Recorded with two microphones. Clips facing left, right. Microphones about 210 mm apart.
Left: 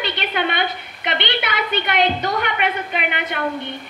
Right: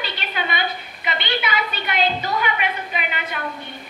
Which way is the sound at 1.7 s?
70° left (ahead or behind).